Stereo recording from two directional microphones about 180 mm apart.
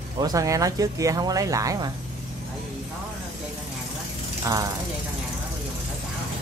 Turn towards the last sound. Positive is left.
turn(degrees=-20)  # may be behind; listen again after turning